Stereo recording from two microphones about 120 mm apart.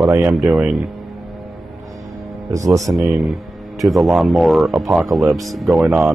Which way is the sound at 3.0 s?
Centre (ahead or behind).